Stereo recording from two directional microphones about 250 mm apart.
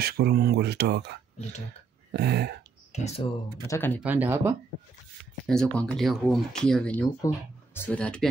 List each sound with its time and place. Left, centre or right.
0.0 s speech: right
2.1 s speech: right
2.9 s speech: left
3.6 s speech: centre
4.0 s speech: centre
5.5 s speech: centre